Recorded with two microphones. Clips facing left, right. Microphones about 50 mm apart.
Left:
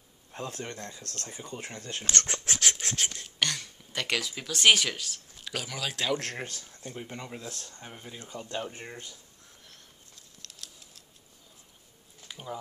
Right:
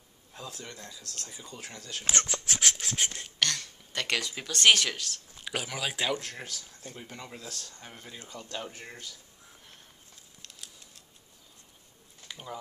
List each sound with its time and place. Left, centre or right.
0.3 s speech: left
2.7 s a sound: left
3.0 s speech: centre
3.3 s speech: centre
5.4 s speech: centre
6.3 s speech: left
7.0 s speech: centre
7.8 s speech: centre; by 9.2 s left
10.4 s a sound: centre
12.3 s a sound: centre